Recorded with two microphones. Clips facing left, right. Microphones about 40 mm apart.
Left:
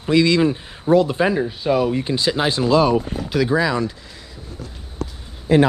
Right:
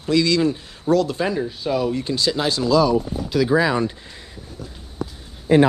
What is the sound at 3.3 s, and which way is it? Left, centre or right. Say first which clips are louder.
Speech: right 1 dB; centre.